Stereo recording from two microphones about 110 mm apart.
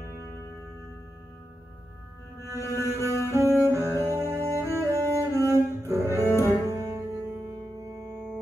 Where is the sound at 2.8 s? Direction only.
25° left (ahead or behind).